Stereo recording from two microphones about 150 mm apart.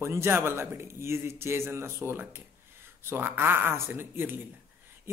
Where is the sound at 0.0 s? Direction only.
15° right (ahead or behind).